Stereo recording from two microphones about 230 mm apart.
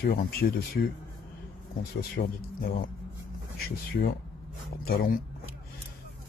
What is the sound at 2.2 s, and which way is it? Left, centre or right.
Speech, left.